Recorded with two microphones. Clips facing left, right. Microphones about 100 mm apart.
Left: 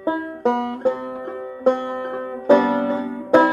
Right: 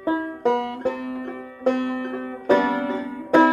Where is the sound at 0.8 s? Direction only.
30° left (ahead or behind).